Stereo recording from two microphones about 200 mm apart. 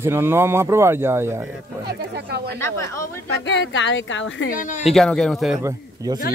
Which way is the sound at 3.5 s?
65° left (ahead or behind).